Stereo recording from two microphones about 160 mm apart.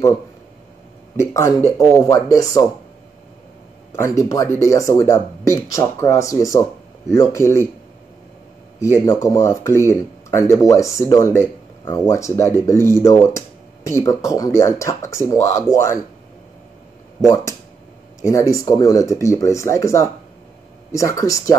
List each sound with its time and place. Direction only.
1.1 s speech: 20° left (ahead or behind)
3.9 s speech: 15° left (ahead or behind)
8.7 s speech: 15° left (ahead or behind)
17.2 s speech: 20° left (ahead or behind)